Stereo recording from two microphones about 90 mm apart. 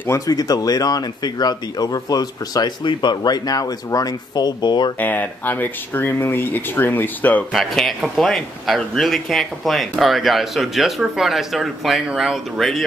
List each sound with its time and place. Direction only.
0.3 s speech: 45° left (ahead or behind)
4.9 s speech: 20° left (ahead or behind)
7.5 s speech: centre (ahead or behind)